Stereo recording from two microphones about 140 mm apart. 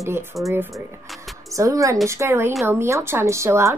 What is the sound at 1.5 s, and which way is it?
A woman's voice, 25° right (ahead or behind).